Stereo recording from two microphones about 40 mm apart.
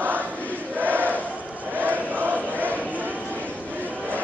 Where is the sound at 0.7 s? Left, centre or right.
Right.